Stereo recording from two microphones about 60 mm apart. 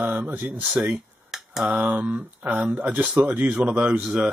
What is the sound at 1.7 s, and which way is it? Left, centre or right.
Speech, right.